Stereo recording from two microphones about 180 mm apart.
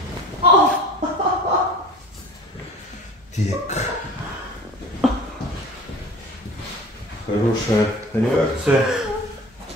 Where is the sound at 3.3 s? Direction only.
40° left (ahead or behind).